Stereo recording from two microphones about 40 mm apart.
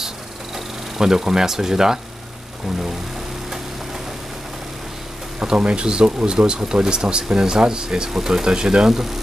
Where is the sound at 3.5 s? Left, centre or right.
Centre.